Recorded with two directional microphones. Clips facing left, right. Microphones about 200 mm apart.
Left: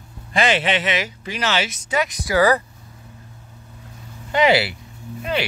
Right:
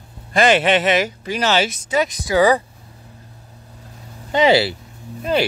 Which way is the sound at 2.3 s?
15° right (ahead or behind).